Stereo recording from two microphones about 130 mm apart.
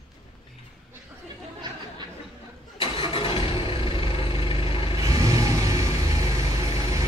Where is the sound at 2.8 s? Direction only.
40° left (ahead or behind).